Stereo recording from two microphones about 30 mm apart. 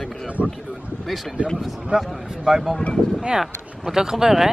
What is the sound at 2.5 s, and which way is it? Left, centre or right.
Speech, centre.